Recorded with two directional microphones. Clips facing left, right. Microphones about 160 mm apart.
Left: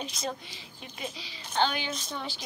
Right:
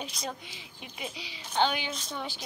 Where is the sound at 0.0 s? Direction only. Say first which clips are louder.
Left 2 dB; 10° right (ahead or behind).